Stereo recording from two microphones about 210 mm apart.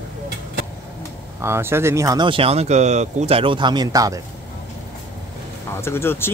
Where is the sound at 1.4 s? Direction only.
10° right (ahead or behind).